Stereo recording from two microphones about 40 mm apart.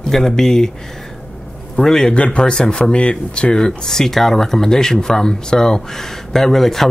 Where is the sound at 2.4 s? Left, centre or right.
Centre.